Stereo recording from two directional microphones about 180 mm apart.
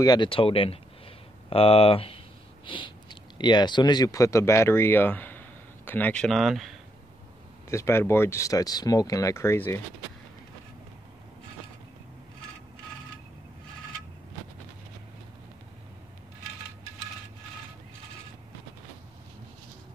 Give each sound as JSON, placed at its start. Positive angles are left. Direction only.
{"t": 0.0, "sound": "speech", "side_deg": 25}
{"t": 7.7, "sound": "speech", "side_deg": 15}